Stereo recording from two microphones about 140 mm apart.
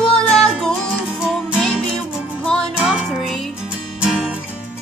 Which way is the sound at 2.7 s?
5° right (ahead or behind).